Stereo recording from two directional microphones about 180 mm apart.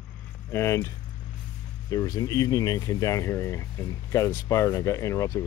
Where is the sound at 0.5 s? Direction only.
15° left (ahead or behind).